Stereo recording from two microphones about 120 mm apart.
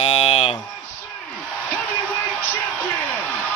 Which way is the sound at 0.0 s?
60° left (ahead or behind).